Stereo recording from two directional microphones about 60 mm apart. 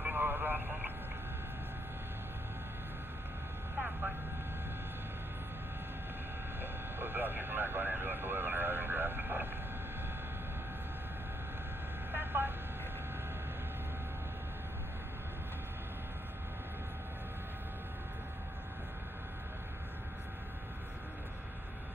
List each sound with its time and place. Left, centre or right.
0.0 s a sound: right
6.6 s speech: right
12.1 s vehicle: right